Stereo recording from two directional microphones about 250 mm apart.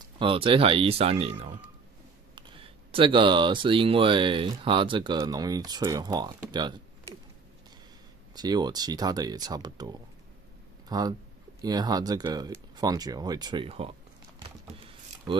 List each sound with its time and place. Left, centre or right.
0.0 s speech: right
8.4 s speech: centre
14.7 s a sound: right